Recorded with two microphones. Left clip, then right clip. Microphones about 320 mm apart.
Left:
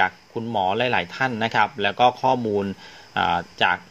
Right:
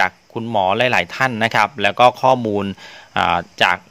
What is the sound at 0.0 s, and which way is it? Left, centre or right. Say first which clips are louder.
Speech: right 3 dB; right.